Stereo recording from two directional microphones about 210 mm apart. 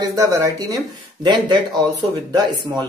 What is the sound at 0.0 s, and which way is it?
Speech, 15° right (ahead or behind).